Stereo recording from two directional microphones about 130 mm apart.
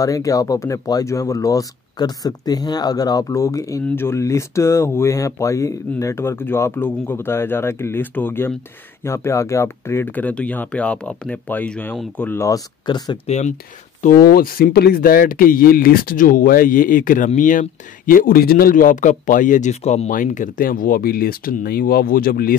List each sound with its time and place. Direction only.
0.0 s speech: 25° left (ahead or behind)
13.3 s speech: 65° left (ahead or behind)
14.0 s speech: 90° left; by 20.1 s 55° left (ahead or behind)
20.1 s speech: 85° left